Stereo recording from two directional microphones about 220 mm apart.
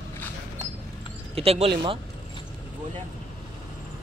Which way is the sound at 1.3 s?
25° right (ahead or behind).